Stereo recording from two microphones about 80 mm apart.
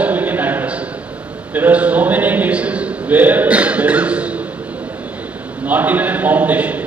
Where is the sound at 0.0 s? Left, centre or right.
Right.